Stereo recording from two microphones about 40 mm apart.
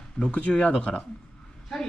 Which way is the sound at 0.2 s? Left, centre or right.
Left.